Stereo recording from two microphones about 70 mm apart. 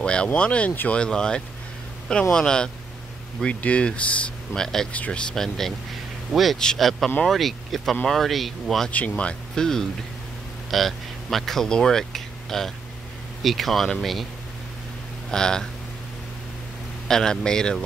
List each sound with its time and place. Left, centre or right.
0.0 s speech: centre
4.6 s speech: centre
8.9 s speech: centre
15.3 s speech: centre
17.1 s speech: centre